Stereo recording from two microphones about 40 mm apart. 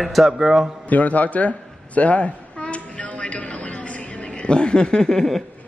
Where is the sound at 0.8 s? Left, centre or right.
Left.